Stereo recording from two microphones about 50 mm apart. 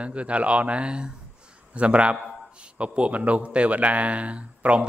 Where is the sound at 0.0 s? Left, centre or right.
Right.